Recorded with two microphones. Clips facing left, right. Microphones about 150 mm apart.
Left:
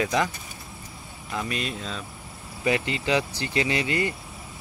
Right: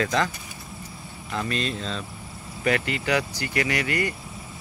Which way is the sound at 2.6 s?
20° left (ahead or behind).